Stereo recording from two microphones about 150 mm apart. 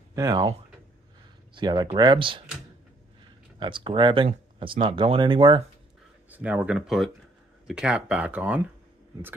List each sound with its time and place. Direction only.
0.1 s speech: 25° right (ahead or behind)
1.5 s speech: 30° right (ahead or behind)
3.5 s speech: 35° right (ahead or behind)
6.3 s speech: 10° right (ahead or behind)